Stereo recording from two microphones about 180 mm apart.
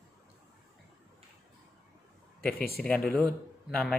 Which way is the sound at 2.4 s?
55° left (ahead or behind).